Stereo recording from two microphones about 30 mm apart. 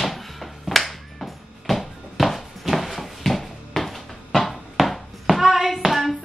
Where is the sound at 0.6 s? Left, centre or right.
Centre.